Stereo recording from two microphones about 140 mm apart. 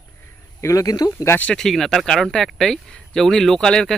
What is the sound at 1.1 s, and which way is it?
Speech, 15° left (ahead or behind).